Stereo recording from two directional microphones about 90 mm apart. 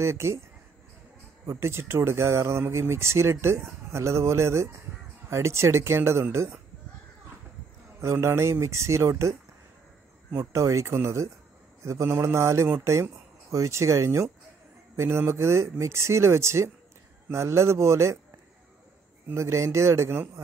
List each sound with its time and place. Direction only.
0.0 s speech: 30° right (ahead or behind)
1.4 s speech: 30° right (ahead or behind)
8.0 s speech: 30° right (ahead or behind)
19.2 s speech: 30° right (ahead or behind)